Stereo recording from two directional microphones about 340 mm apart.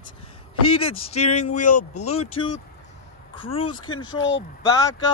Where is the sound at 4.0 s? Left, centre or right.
Left.